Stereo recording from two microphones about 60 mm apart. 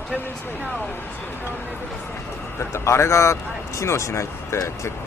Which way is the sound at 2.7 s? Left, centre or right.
Left.